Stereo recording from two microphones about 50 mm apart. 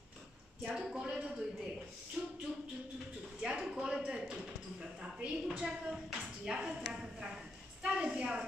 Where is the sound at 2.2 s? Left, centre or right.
Centre.